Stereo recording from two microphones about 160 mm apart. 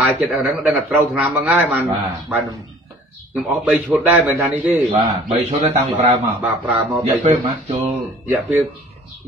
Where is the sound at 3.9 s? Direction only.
10° right (ahead or behind).